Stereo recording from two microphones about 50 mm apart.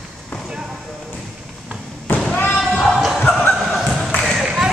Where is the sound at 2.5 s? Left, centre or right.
Centre.